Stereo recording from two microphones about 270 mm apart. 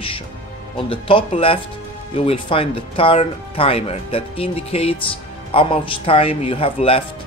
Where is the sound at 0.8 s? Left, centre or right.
Centre.